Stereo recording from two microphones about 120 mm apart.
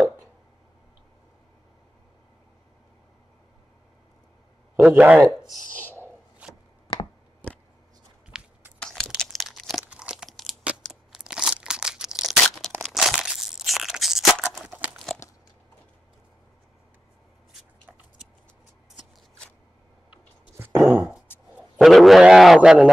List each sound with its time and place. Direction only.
4.7 s a man's voice: 10° right (ahead or behind)
5.4 s speech: centre (ahead or behind)
6.4 s chopping: 10° right (ahead or behind)
8.3 s biting: 5° right (ahead or behind)
9.2 s a sound: centre (ahead or behind)
9.8 s crunch: 5° right (ahead or behind)
10.9 s a sound: 5° right (ahead or behind)
12.8 s tearing: centre (ahead or behind)
14.8 s crunch: 10° right (ahead or behind)
20.5 s dog: 20° right (ahead or behind)
20.9 s a sound: 15° right (ahead or behind)
21.7 s a sound: centre (ahead or behind)